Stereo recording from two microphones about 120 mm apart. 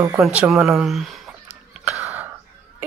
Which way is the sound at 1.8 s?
15° right (ahead or behind).